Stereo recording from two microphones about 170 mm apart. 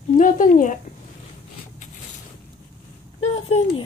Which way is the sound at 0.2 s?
50° left (ahead or behind).